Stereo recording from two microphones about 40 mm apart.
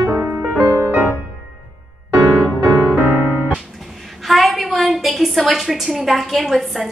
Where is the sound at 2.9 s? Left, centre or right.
Right.